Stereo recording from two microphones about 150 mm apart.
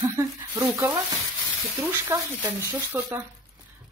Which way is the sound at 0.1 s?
15° right (ahead or behind).